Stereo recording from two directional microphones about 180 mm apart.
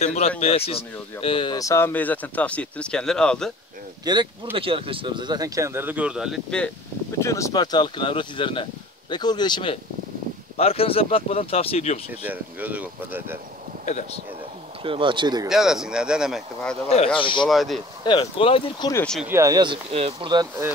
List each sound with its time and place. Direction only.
0.0 s speech: 40° left (ahead or behind); by 3.5 s 5° left (ahead or behind)
4.0 s speech: 25° right (ahead or behind); by 6.7 s centre (ahead or behind)
7.2 s speech: 15° left (ahead or behind); by 12.0 s 35° left (ahead or behind)
12.3 s speech: 10° right (ahead or behind)
14.8 s speech: 30° right (ahead or behind)
15.4 s speech: centre (ahead or behind)
16.9 s speech: 30° left (ahead or behind)
17.5 s speech: centre (ahead or behind)
18.0 s speech: 30° left (ahead or behind)
19.2 s speech: 15° right (ahead or behind)